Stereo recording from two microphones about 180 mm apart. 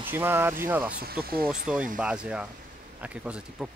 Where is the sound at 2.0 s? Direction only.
5° right (ahead or behind).